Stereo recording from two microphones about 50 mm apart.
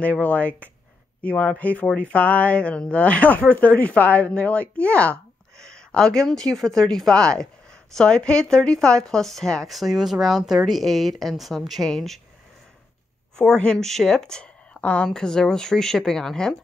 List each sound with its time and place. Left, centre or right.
0.0 s speech: left
5.6 s a sound: centre
6.3 s speech: centre
9.7 s speech: centre
13.4 s speech: centre
14.4 s a sound: left
15.0 s speech: centre